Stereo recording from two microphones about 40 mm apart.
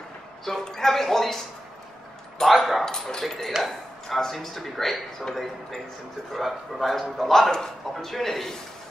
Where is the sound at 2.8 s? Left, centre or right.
Centre.